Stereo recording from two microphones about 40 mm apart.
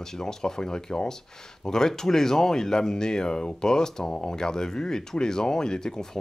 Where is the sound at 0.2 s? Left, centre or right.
Centre.